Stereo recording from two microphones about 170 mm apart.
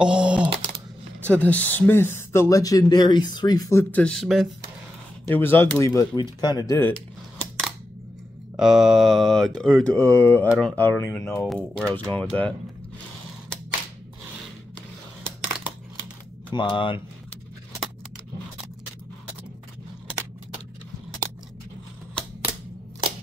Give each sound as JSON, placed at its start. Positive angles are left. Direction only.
{"t": 0.0, "sound": "typing", "side_deg": -5}
{"t": 1.2, "sound": "speech", "side_deg": 10}
{"t": 3.9, "sound": "speech", "side_deg": 5}
{"t": 5.2, "sound": "speech", "side_deg": 10}
{"t": 7.3, "sound": "a sound", "side_deg": 5}
{"t": 8.5, "sound": "speech", "side_deg": -5}
{"t": 11.4, "sound": "speech", "side_deg": 5}
{"t": 16.4, "sound": "speech", "side_deg": 30}